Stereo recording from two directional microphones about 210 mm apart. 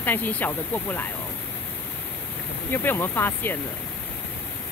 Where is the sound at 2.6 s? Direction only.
10° left (ahead or behind).